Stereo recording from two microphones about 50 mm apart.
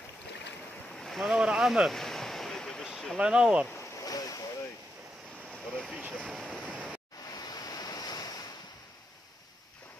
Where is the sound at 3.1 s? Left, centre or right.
Centre.